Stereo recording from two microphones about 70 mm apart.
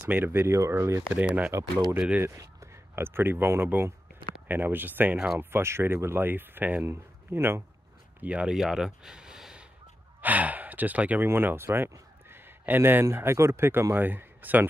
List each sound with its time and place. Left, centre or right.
0.1 s speech: right
1.1 s speech: right
2.2 s speech: right
5.4 s speech: right
6.9 s speech: right
8.2 s speech: centre
8.5 s speech: centre
10.2 s speech: right
11.2 s speech: right
12.3 s a sound: right
13.0 s speech: right